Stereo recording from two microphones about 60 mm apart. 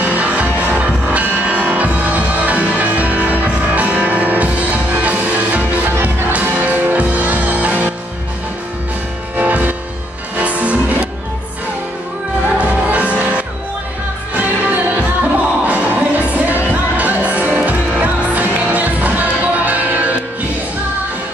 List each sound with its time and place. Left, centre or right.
0.0 s music: right
9.4 s music: right
12.5 s music: right